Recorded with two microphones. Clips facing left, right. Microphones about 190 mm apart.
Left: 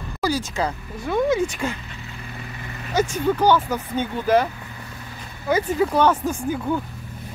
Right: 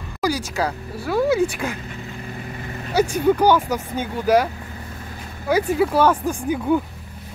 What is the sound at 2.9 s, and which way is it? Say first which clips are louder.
Speech: right 3 dB; 10° right (ahead or behind).